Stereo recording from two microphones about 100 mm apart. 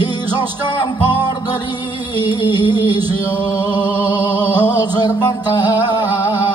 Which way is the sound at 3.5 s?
45° left (ahead or behind).